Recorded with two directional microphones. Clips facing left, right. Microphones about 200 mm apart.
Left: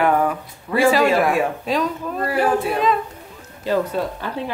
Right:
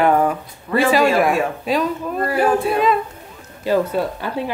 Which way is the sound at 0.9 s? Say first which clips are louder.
Right 1 dB; 15° right (ahead or behind).